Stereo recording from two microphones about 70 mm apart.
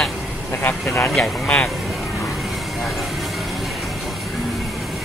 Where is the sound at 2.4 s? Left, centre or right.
Centre.